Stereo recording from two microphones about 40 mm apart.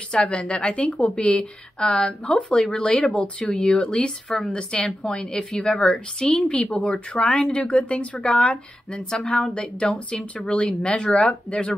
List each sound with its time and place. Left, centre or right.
0.2 s a woman's voice: left
9.1 s a woman's voice: centre; by 11.7 s left